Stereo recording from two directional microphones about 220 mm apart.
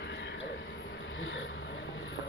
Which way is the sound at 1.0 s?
60° left (ahead or behind).